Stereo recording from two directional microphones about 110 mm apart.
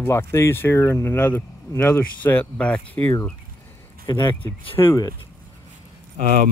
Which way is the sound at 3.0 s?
25° left (ahead or behind).